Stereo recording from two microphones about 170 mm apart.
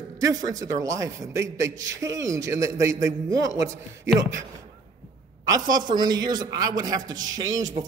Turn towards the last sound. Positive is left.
turn(degrees=-20)  # may be behind; listen again after turning